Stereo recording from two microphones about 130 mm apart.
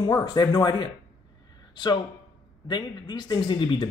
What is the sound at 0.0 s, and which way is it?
Speech, 30° left (ahead or behind).